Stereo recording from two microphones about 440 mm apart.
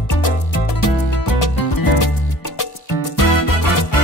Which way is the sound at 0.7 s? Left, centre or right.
Left.